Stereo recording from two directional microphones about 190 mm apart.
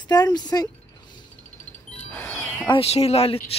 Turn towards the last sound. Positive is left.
turn(degrees=30)  # may be behind; listen again after turning